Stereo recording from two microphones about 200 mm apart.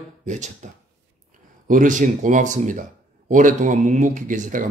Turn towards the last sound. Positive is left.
turn(degrees=-40)  # may be behind; listen again after turning